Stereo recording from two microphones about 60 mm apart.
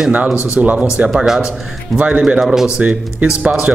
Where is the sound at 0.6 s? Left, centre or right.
Right.